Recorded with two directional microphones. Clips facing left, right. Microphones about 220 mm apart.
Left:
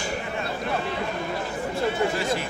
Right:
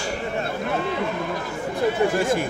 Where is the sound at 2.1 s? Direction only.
50° right (ahead or behind).